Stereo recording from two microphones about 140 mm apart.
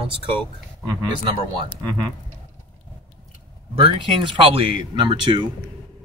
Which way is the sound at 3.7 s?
40° right (ahead or behind).